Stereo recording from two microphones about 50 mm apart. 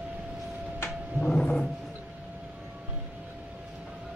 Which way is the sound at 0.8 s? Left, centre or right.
Centre.